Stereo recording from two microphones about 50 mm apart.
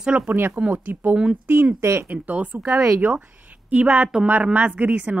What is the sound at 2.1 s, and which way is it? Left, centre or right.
Speech, right.